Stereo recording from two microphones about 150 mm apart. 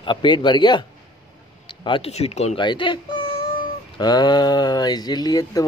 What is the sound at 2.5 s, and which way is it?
A man's voice, 35° left (ahead or behind).